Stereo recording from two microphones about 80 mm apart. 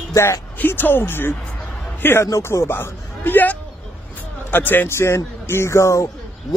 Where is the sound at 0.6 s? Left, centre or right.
Left.